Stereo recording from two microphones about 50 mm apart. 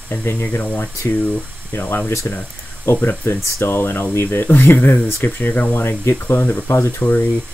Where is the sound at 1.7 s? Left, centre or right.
Left.